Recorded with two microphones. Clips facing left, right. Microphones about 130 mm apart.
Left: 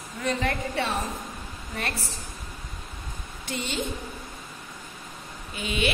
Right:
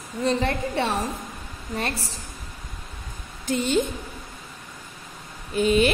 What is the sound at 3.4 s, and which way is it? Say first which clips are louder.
Speech: right 10 dB; 45° right (ahead or behind).